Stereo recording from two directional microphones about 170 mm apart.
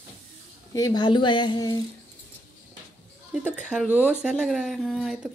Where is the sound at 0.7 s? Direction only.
20° left (ahead or behind).